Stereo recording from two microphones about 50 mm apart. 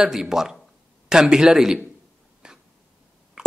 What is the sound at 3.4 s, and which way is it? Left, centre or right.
Plop, centre.